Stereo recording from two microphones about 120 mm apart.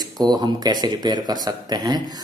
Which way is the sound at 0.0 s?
35° right (ahead or behind).